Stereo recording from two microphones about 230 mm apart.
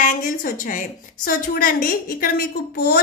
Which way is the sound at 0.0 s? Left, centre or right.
Left.